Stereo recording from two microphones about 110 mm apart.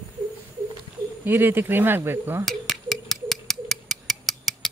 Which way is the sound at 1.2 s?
20° right (ahead or behind).